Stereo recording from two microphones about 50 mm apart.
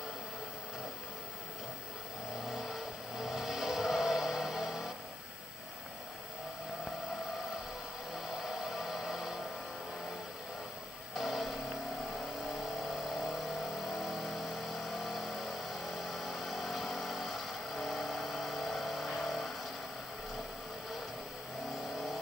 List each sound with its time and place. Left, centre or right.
2.5 s vehicle: centre
8.5 s hair dryer: centre
11.1 s vehicle: centre
13.2 s vehicle: centre